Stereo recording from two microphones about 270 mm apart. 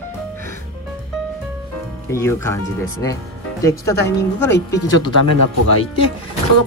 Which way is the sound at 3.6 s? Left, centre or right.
Centre.